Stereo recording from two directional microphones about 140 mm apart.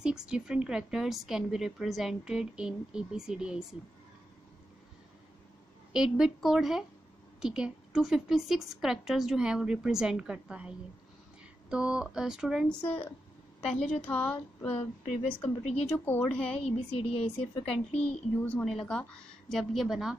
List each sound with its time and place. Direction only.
0.0 s a woman's voice: 5° right (ahead or behind)
5.9 s a woman's voice: centre (ahead or behind)
11.7 s a woman's voice: 5° right (ahead or behind)
12.6 s speech: 10° left (ahead or behind)
13.7 s speech: 50° left (ahead or behind)
14.0 s speech: 10° left (ahead or behind)
15.4 s speech: 50° left (ahead or behind)
15.9 s speech: 10° left (ahead or behind)
16.6 s speech: 45° left (ahead or behind)
18.0 s a woman's voice: 10° left (ahead or behind)